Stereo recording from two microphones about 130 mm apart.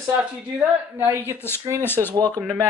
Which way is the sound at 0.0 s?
10° right (ahead or behind).